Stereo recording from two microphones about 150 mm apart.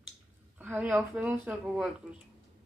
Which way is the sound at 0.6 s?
10° right (ahead or behind).